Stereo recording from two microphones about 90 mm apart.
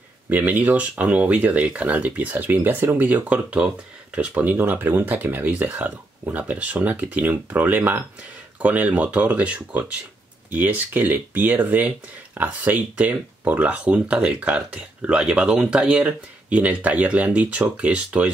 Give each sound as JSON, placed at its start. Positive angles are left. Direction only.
{"t": 0.3, "sound": "speech", "side_deg": -20}